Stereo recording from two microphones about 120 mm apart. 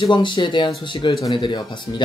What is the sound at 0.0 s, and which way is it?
Speech, 40° left (ahead or behind).